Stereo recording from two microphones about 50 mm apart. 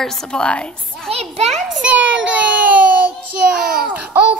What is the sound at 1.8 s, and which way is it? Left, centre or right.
Child singing, right.